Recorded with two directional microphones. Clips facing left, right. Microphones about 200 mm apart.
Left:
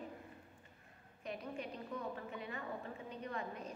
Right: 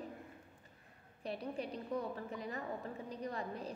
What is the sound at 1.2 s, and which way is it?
A woman's voice, 35° right (ahead or behind).